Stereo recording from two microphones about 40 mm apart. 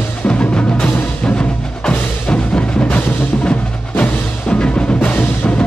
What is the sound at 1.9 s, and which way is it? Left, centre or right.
Music, left.